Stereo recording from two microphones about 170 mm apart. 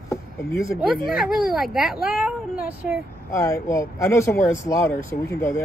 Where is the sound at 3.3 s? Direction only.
20° left (ahead or behind).